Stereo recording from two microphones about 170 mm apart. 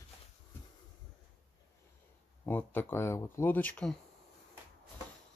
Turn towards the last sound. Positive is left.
turn(degrees=5)  # may be behind; listen again after turning